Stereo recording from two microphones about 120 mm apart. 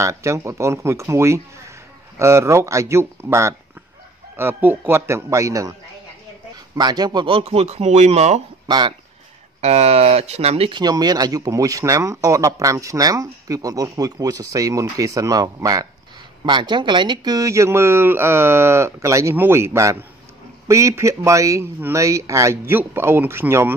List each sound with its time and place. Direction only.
0.0 s speech: 25° right (ahead or behind)
7.2 s speech: 50° right (ahead or behind)
8.6 s speech: 35° right (ahead or behind)
9.6 s speech: 65° right (ahead or behind)
10.7 s speech: 35° right (ahead or behind); by 23.7 s 20° right (ahead or behind)